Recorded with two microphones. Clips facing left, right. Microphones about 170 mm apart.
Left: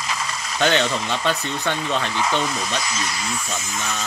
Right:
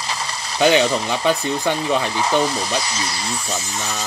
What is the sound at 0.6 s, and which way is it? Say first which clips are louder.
Speech: right 5 dB; 10° right (ahead or behind).